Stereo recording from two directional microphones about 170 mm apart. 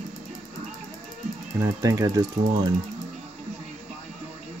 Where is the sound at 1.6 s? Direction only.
20° right (ahead or behind).